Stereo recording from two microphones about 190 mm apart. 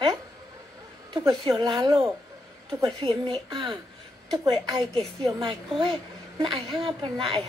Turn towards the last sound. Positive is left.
turn(degrees=-25)  # may be behind; listen again after turning